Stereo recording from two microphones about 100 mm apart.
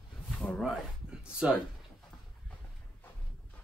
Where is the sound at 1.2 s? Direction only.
10° right (ahead or behind).